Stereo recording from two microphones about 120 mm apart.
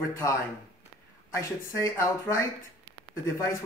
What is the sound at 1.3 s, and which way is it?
Speech, 25° left (ahead or behind).